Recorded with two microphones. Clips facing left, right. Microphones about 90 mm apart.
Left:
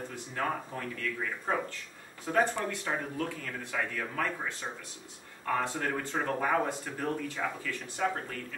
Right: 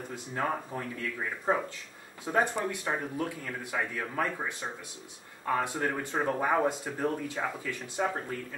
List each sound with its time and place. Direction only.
0.1 s a man's voice: 20° right (ahead or behind)